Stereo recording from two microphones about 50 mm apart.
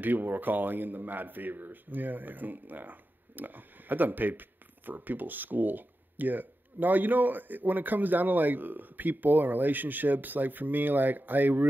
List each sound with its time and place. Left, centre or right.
0.0 s speech: right